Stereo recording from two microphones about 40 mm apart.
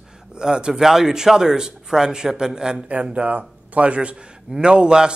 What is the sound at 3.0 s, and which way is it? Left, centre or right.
A man's voice, right.